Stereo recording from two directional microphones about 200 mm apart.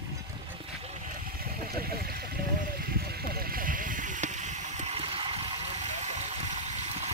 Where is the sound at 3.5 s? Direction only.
45° right (ahead or behind).